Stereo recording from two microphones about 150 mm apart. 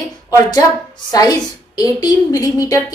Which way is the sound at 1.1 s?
25° left (ahead or behind).